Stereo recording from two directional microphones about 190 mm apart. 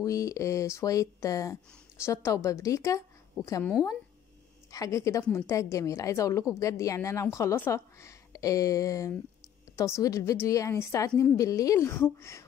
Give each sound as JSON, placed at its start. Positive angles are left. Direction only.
{"t": 0.0, "sound": "a woman's voice", "side_deg": 15}
{"t": 11.3, "sound": "a woman's voice", "side_deg": 15}